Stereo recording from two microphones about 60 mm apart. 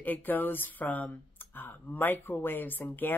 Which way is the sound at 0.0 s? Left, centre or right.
Left.